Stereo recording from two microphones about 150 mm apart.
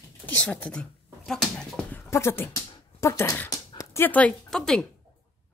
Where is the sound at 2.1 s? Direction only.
15° left (ahead or behind).